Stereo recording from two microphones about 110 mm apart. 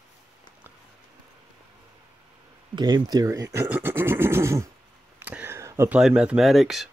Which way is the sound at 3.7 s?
20° right (ahead or behind).